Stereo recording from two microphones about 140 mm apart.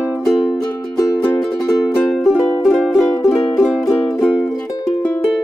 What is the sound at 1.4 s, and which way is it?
Music, centre (ahead or behind).